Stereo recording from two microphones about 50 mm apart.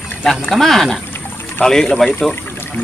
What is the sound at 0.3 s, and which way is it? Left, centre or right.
Speech, centre.